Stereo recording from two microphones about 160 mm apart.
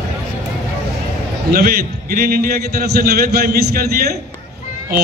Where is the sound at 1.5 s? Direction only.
70° right (ahead or behind).